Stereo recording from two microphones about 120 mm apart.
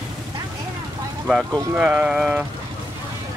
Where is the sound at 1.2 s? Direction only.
5° right (ahead or behind).